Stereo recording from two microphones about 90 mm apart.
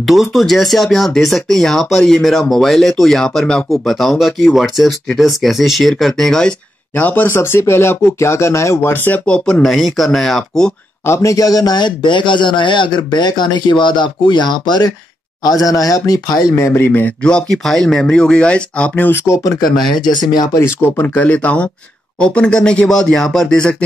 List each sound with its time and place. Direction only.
0.0 s speech: centre (ahead or behind)
7.0 s speech: 20° left (ahead or behind)
9.6 s speech: centre (ahead or behind)
11.1 s a man's voice: 40° left (ahead or behind); by 17.1 s 25° left (ahead or behind)
17.2 s speech: 10° left (ahead or behind)
19.2 s speech: 35° left (ahead or behind)
20.8 s speech: 20° left (ahead or behind)